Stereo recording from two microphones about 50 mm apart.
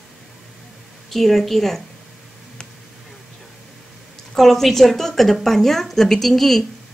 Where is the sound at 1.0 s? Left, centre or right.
Centre.